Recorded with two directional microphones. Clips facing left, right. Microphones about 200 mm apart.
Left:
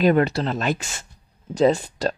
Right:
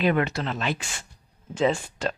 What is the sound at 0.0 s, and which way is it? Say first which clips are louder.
Speech: left 5 dB; 35° left (ahead or behind).